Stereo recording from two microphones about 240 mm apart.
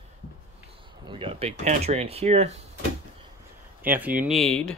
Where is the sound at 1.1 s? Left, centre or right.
Right.